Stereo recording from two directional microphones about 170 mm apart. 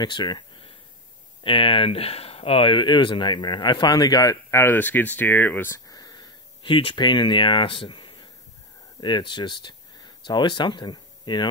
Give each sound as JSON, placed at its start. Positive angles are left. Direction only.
{"t": 0.0, "sound": "speech", "side_deg": 25}